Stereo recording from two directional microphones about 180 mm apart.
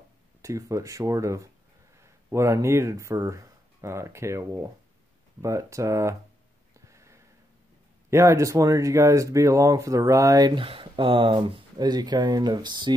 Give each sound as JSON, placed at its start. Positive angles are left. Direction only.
{"t": 0.4, "sound": "speech", "side_deg": -15}
{"t": 6.9, "sound": "sniff", "side_deg": -15}
{"t": 8.1, "sound": "speech", "side_deg": -15}